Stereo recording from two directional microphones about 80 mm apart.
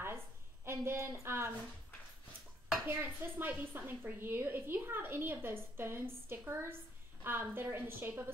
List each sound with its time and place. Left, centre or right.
0.7 s a woman's voice: right
2.9 s a woman's voice: right